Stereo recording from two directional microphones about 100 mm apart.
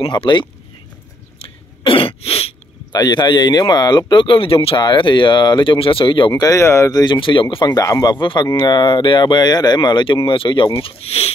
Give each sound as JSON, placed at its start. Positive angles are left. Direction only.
{"t": 0.1, "sound": "speech", "side_deg": 55}
{"t": 1.9, "sound": "cough", "side_deg": 65}
{"t": 2.9, "sound": "speech", "side_deg": 45}
{"t": 4.7, "sound": "speech", "side_deg": 50}
{"t": 6.4, "sound": "speech", "side_deg": 30}
{"t": 6.9, "sound": "speech", "side_deg": 40}
{"t": 7.2, "sound": "speech", "side_deg": 55}
{"t": 7.8, "sound": "speech", "side_deg": 40}